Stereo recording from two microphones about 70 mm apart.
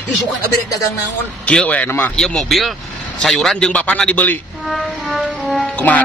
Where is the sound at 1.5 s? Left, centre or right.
Centre.